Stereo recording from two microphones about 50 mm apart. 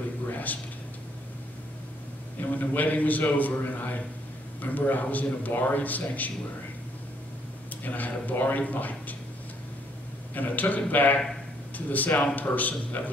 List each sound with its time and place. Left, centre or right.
0.3 s a sound: left
2.5 s a man's voice: left
7.8 s a man's voice: left
10.3 s a man's voice: left